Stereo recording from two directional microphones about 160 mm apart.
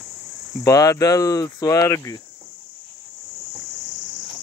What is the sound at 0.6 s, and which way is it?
Speech, 20° left (ahead or behind).